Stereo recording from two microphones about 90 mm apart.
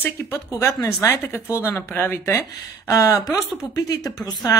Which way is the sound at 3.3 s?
40° left (ahead or behind).